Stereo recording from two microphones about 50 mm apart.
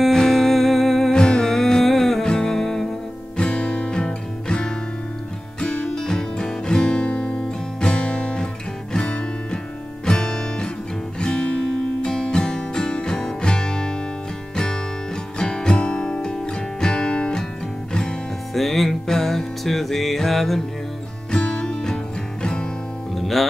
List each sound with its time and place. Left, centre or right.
0.0 s music: centre
1.1 s music: centre
3.3 s music: centre
18.5 s music: centre
21.3 s music: centre
23.1 s music: centre